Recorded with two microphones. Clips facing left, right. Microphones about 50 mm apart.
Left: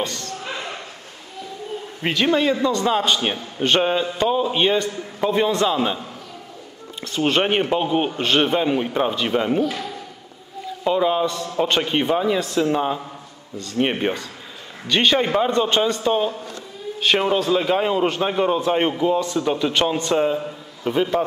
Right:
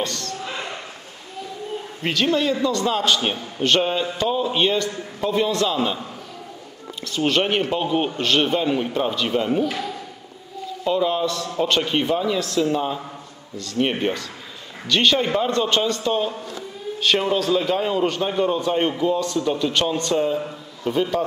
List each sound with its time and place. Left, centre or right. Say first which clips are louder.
0.0 s speech: even; centre
2.0 s a man's voice: left 2 dB; centre
4.6 s a man's voice: left 1 dB; centre
7.1 s a man's voice: left 1 dB; left
10.8 s a man's voice: left 2 dB; centre